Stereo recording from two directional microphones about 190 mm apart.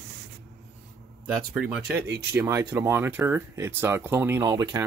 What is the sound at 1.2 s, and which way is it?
Speech, 5° right (ahead or behind).